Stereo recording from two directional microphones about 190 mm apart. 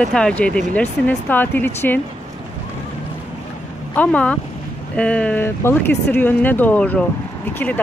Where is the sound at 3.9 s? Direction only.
10° left (ahead or behind).